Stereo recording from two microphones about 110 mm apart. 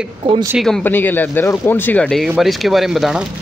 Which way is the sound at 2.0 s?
Centre (ahead or behind).